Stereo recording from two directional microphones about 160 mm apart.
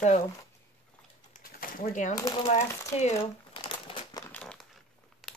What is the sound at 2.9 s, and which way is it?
Speech, 40° left (ahead or behind).